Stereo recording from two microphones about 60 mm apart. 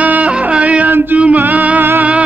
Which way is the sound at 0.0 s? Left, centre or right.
Right.